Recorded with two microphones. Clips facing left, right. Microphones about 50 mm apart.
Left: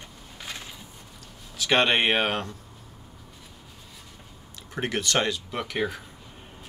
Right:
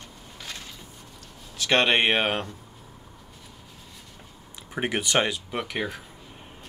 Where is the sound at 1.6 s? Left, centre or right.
Centre.